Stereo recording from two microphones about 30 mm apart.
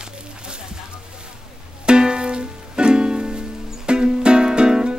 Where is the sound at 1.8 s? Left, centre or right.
Right.